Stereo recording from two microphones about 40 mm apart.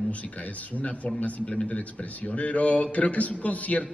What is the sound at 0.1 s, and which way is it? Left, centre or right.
A man's voice, left.